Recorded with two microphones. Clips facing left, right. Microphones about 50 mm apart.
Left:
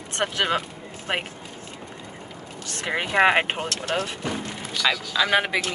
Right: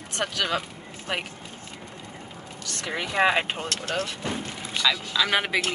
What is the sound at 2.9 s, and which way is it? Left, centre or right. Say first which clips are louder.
Speech: left 4 dB; left.